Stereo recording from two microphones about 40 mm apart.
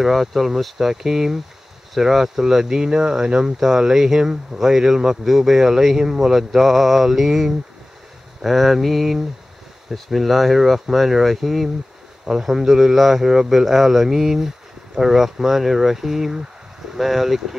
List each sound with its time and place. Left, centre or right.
0.0 s speech: centre